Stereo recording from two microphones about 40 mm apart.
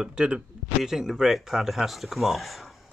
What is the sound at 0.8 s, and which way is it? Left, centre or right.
Speech, centre.